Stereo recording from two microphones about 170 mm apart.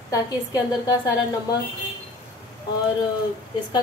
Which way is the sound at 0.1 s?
20° left (ahead or behind).